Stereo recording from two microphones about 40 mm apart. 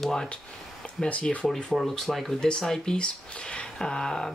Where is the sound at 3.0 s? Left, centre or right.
Left.